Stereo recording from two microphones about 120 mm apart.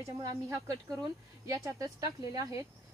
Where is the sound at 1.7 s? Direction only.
30° right (ahead or behind).